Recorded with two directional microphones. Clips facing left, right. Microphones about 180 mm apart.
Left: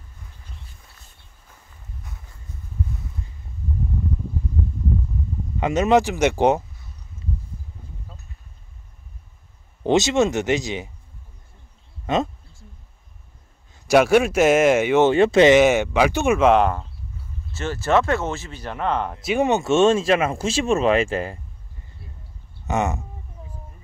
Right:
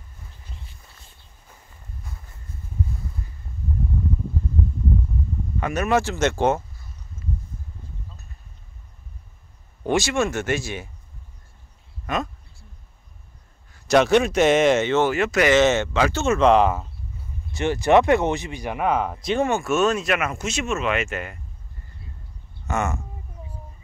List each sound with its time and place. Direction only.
5.6 s speech: 20° left (ahead or behind)
9.8 s speech: 20° left (ahead or behind)
12.1 s speech: 25° left (ahead or behind)
13.7 s a sound: 20° left (ahead or behind)
13.9 s speech: 10° left (ahead or behind)
15.0 s speech: 30° left (ahead or behind)
15.5 s speech: 15° left (ahead or behind)
17.5 s speech: 15° right (ahead or behind); by 19.4 s 5° left (ahead or behind)
19.4 s speech: 20° left (ahead or behind)
22.7 s speech: 20° left (ahead or behind)